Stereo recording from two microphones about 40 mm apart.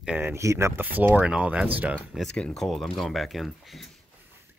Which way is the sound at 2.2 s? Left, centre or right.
Left.